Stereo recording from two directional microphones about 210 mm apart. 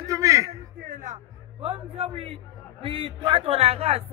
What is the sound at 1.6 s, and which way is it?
A man's voice, 25° right (ahead or behind).